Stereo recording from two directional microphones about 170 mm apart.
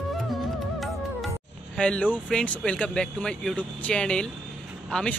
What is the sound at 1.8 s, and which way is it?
Speech, 5° left (ahead or behind).